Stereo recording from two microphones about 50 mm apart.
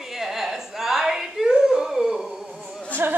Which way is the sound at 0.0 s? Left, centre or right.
Centre.